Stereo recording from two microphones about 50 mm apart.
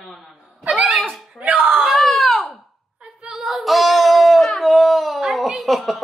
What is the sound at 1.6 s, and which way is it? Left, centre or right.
Screaming, centre.